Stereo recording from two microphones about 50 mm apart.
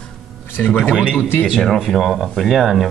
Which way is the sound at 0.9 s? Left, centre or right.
Centre.